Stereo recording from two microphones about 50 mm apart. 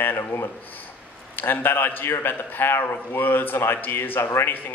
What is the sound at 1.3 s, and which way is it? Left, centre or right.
A man's voice, left.